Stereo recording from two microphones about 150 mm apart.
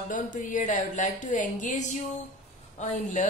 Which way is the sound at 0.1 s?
60° left (ahead or behind).